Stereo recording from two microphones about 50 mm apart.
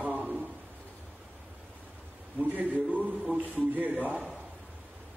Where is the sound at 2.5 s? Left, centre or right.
Right.